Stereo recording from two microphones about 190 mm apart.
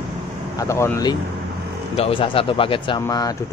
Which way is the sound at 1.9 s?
30° left (ahead or behind).